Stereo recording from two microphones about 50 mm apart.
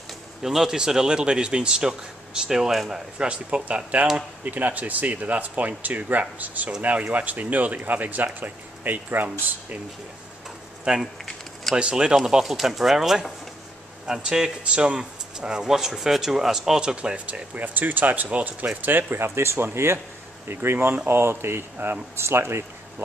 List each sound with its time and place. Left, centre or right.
0.4 s speech: centre
3.2 s speech: centre; by 9.3 s right
10.8 s speech: centre
12.3 s speech: centre
16.9 s speech: right
17.6 s speech: right
18.8 s speech: right
21.1 s speech: right